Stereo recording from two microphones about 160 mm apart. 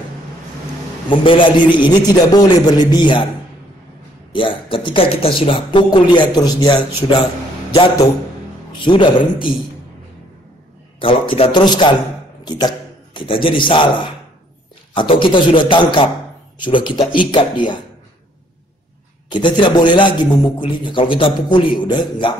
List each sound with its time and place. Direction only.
1.1 s a man's voice: 30° left (ahead or behind)
4.3 s a man's voice: 30° left (ahead or behind)
8.8 s a man's voice: 30° left (ahead or behind)
11.0 s a man's voice: 35° left (ahead or behind)
19.2 s a man's voice: 30° left (ahead or behind)